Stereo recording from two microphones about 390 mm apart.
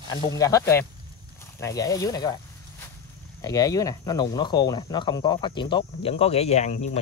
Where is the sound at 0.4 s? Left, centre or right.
Centre.